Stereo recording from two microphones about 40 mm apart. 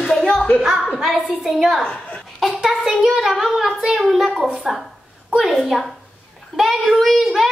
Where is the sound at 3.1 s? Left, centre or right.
Right.